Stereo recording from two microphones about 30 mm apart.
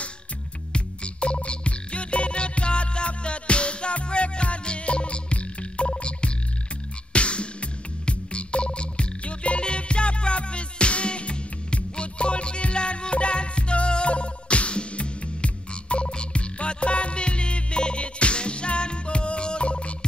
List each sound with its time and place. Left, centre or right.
0.7 s music: left